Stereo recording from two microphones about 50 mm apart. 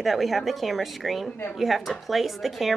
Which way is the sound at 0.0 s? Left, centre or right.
Centre.